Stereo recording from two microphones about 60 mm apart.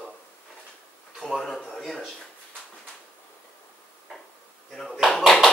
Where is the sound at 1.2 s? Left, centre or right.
Centre.